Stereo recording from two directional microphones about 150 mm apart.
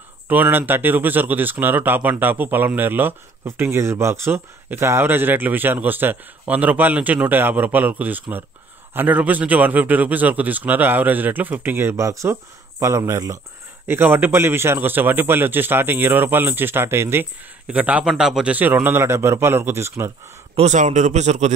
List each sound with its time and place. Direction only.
0.3 s speech: 15° right (ahead or behind)
20.5 s a man's voice: 50° right (ahead or behind)